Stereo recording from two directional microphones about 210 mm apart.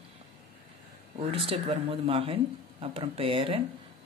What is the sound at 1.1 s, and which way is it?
Speech, 30° right (ahead or behind).